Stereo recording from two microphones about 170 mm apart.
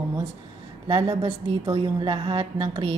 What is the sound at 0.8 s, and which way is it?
A woman's voice, 25° right (ahead or behind).